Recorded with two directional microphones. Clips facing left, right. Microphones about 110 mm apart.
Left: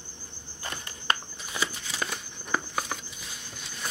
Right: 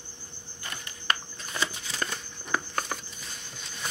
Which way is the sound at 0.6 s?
35° left (ahead or behind).